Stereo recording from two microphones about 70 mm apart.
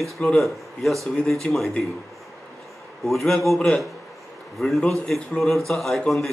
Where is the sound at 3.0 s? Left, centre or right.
Centre.